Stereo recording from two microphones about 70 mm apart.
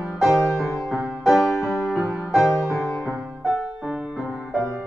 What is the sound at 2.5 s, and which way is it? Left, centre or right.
Music, left.